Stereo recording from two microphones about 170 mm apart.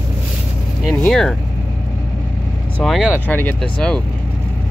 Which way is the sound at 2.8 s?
Centre (ahead or behind).